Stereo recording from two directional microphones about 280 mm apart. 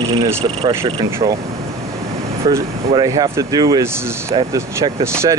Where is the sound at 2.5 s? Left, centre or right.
Centre.